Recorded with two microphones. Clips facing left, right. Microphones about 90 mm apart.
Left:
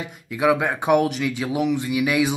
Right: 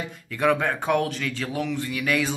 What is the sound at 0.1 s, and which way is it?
Speech, 10° left (ahead or behind).